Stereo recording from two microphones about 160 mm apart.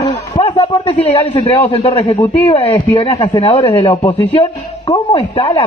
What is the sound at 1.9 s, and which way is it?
A man's voice, 35° left (ahead or behind).